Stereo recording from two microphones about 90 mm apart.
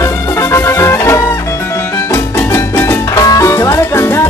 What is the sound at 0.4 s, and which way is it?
Music, 30° left (ahead or behind).